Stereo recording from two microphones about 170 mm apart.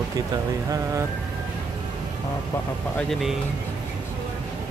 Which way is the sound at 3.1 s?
Centre (ahead or behind).